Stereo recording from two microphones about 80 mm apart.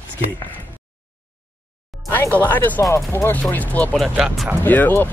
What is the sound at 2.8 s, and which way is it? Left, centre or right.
Speech, left.